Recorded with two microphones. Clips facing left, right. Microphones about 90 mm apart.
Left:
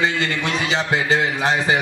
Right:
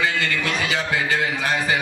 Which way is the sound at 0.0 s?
25° left (ahead or behind).